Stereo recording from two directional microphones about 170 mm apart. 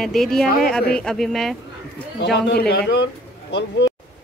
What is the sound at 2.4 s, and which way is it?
A man's voice, 80° left.